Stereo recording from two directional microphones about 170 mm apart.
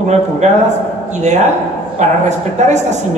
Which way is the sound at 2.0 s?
45° right (ahead or behind).